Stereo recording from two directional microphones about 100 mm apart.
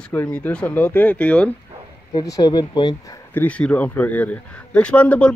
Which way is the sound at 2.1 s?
40° left (ahead or behind).